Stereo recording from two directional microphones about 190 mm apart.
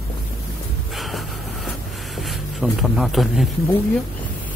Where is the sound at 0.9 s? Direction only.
Centre (ahead or behind).